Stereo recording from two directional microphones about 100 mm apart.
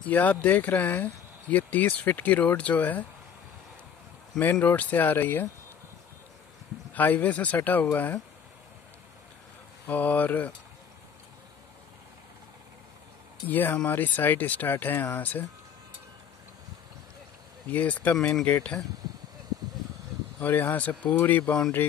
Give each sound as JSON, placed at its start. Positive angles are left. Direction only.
{"t": 0.0, "sound": "speech", "side_deg": 15}
{"t": 4.4, "sound": "speech", "side_deg": 20}
{"t": 6.9, "sound": "speech", "side_deg": 15}
{"t": 9.8, "sound": "speech", "side_deg": 15}
{"t": 13.5, "sound": "speech", "side_deg": 20}
{"t": 17.6, "sound": "speech", "side_deg": 15}
{"t": 20.3, "sound": "speech", "side_deg": 20}